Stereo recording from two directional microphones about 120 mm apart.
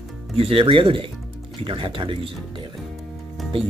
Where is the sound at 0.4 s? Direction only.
50° right (ahead or behind).